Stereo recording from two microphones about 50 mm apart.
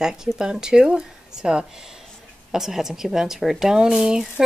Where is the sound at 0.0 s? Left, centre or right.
Centre.